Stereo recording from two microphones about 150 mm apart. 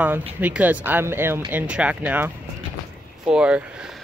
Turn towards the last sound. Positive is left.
turn(degrees=-5)  # may be behind; listen again after turning